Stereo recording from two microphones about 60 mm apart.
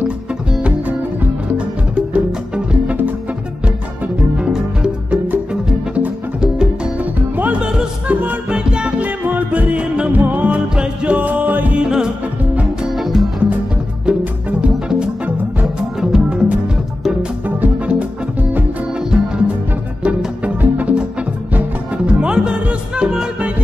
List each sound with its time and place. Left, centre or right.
0.5 s music: centre
2.0 s music: right
4.4 s music: centre
7.0 s music: right
7.6 s music: centre
9.2 s music: right
11.7 s music: centre
12.9 s music: centre
14.1 s music: centre
15.6 s music: centre; by 18.0 s right
19.0 s music: centre